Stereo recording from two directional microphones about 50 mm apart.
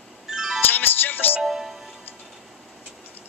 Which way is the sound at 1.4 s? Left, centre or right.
Centre.